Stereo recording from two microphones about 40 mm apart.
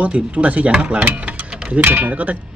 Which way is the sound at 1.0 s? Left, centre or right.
Right.